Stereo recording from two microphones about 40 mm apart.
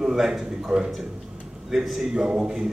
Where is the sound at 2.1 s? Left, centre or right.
Right.